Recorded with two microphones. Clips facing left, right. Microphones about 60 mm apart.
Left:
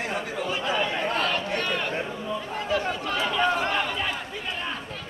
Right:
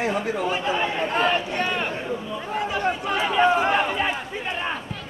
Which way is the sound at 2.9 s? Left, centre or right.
Right.